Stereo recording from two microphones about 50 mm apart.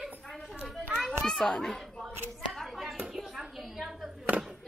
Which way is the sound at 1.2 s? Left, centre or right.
Centre.